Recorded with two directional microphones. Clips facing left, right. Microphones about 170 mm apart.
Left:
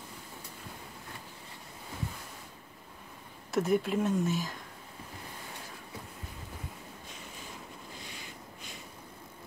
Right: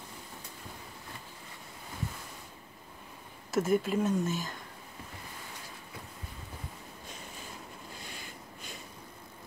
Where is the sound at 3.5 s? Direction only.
Centre (ahead or behind).